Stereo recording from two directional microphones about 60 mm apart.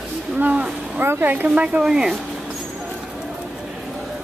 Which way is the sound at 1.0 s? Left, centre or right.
Right.